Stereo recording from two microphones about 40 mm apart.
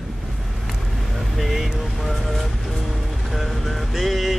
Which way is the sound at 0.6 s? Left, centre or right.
Centre.